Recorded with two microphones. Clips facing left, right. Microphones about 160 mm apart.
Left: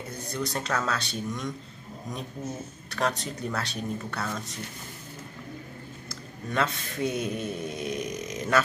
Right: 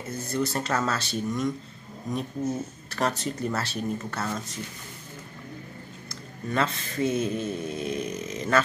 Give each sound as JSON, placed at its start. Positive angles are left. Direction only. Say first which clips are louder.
{"t": 0.1, "sound": "a man's voice", "louder": "right 5 dB", "side_deg": 0}
{"t": 2.9, "sound": "a man's voice", "louder": "right 1 dB", "side_deg": 0}
{"t": 6.5, "sound": "a man's voice", "louder": "right 1 dB", "side_deg": 0}